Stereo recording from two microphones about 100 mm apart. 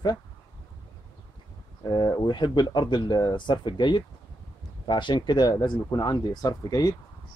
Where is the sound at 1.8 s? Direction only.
45° left (ahead or behind).